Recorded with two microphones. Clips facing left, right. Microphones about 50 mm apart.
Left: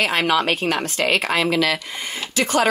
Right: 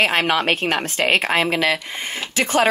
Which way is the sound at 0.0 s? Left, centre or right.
Right.